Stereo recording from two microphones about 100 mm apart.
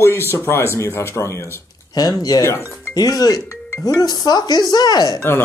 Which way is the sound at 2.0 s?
40° left (ahead or behind).